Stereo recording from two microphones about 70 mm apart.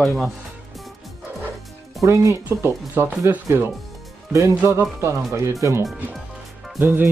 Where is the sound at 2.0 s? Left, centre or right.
Right.